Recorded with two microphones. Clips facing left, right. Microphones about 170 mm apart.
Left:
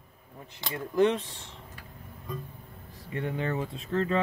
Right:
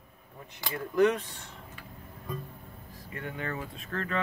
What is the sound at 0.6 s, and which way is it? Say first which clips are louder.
Speech: even; 25° left (ahead or behind).